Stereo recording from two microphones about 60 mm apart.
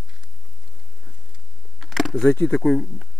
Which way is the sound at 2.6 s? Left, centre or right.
Centre.